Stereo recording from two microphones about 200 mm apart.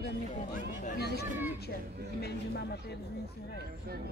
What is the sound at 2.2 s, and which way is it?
Speech, 55° left (ahead or behind).